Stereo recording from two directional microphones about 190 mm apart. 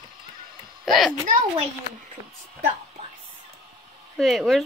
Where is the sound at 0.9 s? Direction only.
Centre (ahead or behind).